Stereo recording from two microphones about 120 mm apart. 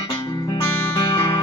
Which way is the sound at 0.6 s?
35° left (ahead or behind).